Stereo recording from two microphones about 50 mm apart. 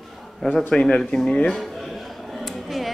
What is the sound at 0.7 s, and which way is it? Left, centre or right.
Speech, centre.